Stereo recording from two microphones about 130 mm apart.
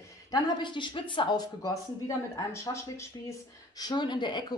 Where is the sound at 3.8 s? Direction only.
35° left (ahead or behind).